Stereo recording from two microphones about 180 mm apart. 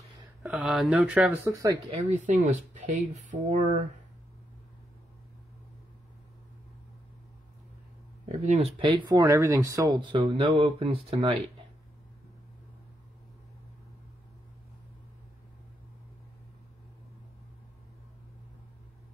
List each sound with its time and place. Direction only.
0.4 s speech: 5° right (ahead or behind)
1.9 s speech: 40° right (ahead or behind)
8.3 s speech: 35° right (ahead or behind)